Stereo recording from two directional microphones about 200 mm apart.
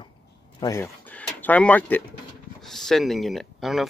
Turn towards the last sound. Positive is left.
turn(degrees=0)  # may be behind; listen again after turning